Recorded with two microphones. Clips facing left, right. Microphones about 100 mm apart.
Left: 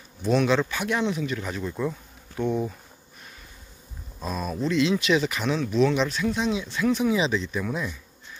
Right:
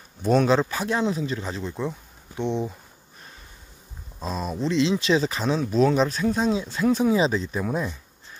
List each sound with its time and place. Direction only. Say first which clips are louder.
0.2 s speech: right 2 dB; 40° right (ahead or behind); by 2.7 s 20° right (ahead or behind)
4.2 s speech: right 1 dB; 25° right (ahead or behind)